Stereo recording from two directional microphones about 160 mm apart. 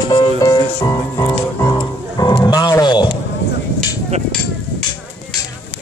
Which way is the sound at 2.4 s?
25° left (ahead or behind).